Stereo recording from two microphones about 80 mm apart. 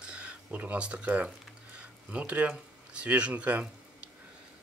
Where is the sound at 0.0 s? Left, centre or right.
Centre.